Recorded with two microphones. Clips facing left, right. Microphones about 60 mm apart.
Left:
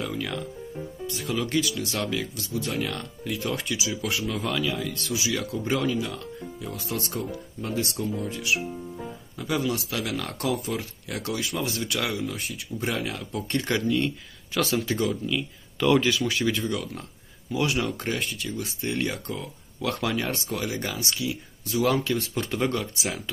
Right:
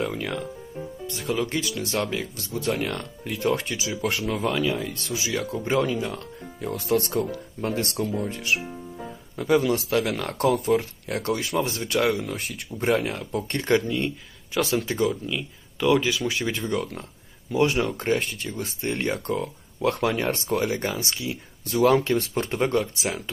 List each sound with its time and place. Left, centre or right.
0.0 s speech: right
4.4 s speech: right
6.7 s speech: right
12.2 s speech: right
12.7 s speech: right
13.9 s speech: centre; by 19.5 s right
19.8 s speech: right
21.6 s speech: right